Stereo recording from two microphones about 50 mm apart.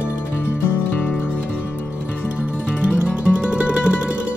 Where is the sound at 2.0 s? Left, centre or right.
Right.